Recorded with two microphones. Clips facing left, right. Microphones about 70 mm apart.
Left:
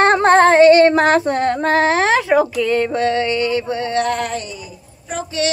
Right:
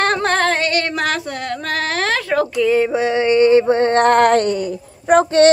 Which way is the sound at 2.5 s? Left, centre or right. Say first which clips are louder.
Right 2 dB; centre.